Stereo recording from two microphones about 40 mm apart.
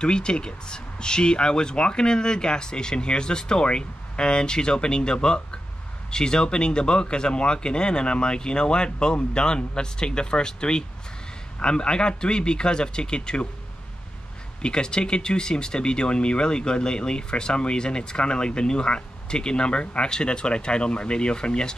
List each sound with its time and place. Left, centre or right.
0.0 s speech: left
14.6 s speech: left